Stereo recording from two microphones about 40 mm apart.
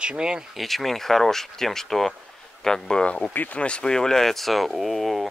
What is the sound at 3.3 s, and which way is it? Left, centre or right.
Speech, left.